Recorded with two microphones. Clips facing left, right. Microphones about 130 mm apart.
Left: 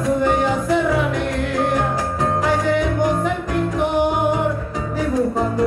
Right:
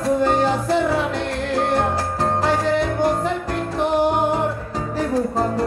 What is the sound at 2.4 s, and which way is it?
Music, 30° right (ahead or behind).